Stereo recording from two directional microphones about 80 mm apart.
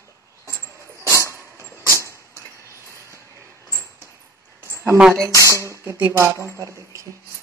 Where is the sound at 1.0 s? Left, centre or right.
Right.